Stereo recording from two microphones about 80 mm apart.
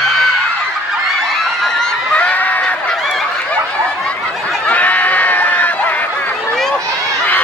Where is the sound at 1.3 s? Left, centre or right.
Centre.